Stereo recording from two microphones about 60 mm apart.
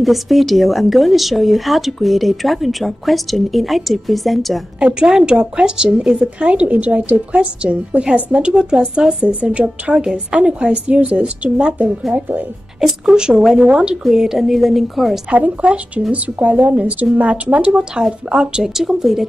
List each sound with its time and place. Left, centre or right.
0.0 s a woman's voice: centre
4.7 s speech: centre
6.5 s a woman's voice: right
12.1 s speech: right
12.8 s a woman's voice: centre
15.2 s a woman's voice: right; by 19.2 s centre